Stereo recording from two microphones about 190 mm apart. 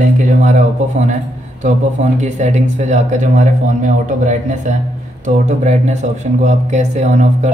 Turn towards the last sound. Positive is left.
turn(degrees=-40)  # may be behind; listen again after turning